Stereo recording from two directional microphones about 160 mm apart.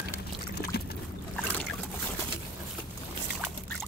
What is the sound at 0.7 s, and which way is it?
Boat, 80° left.